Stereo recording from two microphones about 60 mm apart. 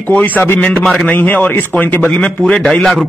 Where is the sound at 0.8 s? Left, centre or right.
Centre.